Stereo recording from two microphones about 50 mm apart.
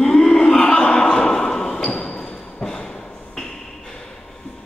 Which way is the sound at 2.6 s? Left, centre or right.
Centre.